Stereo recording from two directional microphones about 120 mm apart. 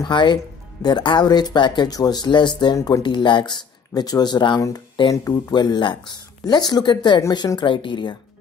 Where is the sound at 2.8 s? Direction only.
25° left (ahead or behind).